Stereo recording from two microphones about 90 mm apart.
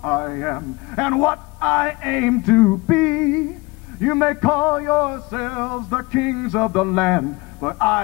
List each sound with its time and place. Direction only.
0.0 s a man's voice: 10° left (ahead or behind)